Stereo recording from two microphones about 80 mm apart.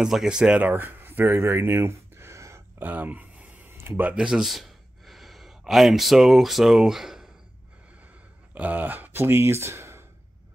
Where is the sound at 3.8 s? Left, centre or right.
Right.